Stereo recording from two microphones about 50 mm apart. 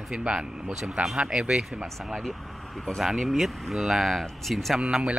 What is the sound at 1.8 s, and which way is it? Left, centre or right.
Speech, centre.